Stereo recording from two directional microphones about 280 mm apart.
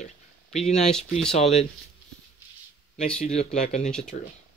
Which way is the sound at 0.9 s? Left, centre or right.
Centre.